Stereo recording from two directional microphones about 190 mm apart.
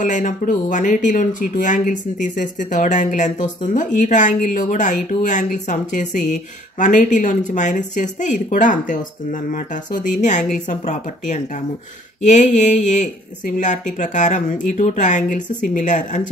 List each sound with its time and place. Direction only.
0.0 s speech: 45° left (ahead or behind)